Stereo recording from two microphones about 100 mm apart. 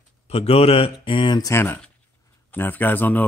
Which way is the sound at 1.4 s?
25° left (ahead or behind).